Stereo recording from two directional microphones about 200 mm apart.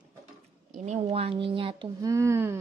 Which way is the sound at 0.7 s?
35° right (ahead or behind).